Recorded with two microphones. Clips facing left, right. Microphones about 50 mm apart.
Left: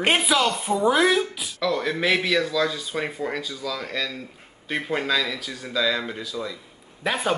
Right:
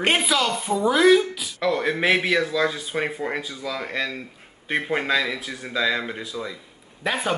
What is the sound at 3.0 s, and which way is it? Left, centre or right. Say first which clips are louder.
Speech: right 1 dB; centre.